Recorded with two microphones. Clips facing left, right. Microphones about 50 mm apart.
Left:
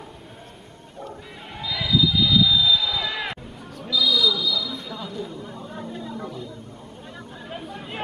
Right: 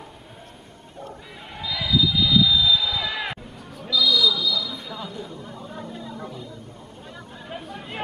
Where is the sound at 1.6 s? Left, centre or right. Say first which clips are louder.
Left 1 dB; centre.